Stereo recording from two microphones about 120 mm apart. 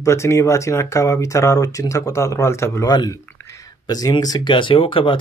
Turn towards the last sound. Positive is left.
turn(degrees=45)  # may be behind; listen again after turning